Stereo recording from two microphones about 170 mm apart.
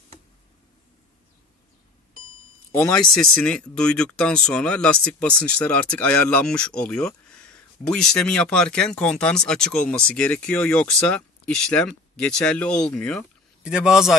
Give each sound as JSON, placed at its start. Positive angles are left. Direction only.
{"t": 2.7, "sound": "a man's voice", "side_deg": 10}